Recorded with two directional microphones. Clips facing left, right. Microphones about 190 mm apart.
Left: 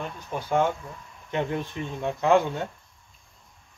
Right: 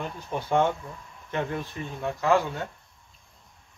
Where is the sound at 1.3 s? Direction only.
20° left (ahead or behind).